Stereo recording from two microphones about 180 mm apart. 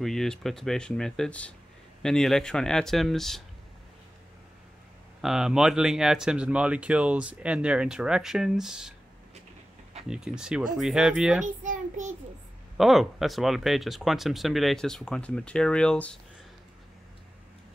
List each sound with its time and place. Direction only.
0.0 s speech: centre (ahead or behind)
5.2 s speech: centre (ahead or behind)
10.0 s speech: 5° right (ahead or behind)
11.4 s a child's voice: 45° right (ahead or behind)
12.7 s speech: centre (ahead or behind)